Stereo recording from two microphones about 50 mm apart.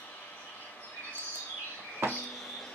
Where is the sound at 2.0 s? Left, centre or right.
Right.